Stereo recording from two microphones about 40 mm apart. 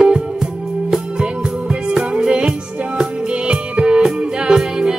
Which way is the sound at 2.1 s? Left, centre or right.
Right.